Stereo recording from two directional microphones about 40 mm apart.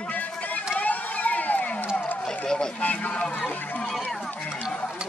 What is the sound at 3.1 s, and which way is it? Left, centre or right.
Speech, left.